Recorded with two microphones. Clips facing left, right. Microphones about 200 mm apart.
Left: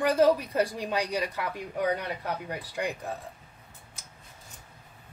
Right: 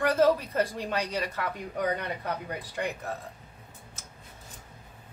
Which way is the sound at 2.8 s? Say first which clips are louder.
Left 1 dB; 15° left (ahead or behind).